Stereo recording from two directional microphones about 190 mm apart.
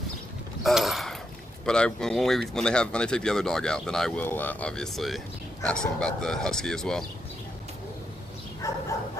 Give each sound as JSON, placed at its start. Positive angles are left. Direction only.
{"t": 0.7, "sound": "speech", "side_deg": 0}
{"t": 8.6, "sound": "bow-wow", "side_deg": 15}